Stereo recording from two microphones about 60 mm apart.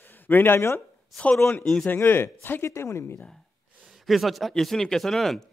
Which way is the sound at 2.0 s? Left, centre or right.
Left.